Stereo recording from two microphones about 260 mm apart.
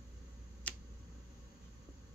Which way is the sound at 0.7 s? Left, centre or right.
Centre.